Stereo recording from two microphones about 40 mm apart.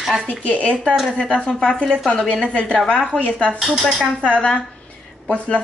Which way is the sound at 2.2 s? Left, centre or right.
Left.